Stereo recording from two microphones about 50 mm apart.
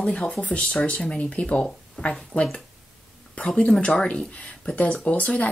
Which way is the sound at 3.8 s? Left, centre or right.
Left.